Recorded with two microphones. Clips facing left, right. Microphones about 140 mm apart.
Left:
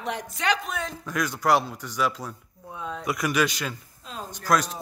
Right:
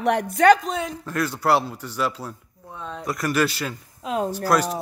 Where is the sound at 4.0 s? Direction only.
70° right (ahead or behind).